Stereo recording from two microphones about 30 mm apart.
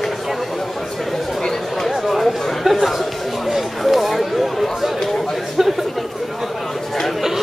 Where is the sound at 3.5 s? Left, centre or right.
Centre.